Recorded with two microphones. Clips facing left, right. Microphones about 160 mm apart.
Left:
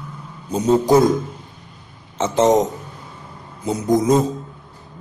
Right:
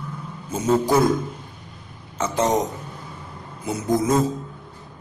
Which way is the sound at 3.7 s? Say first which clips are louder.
Left 4 dB; 20° left (ahead or behind).